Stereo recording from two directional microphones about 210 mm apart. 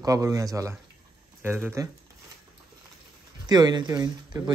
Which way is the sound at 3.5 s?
20° right (ahead or behind).